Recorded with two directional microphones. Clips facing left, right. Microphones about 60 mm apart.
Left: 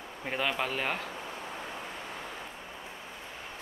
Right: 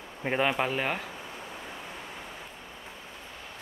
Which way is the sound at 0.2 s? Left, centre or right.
Right.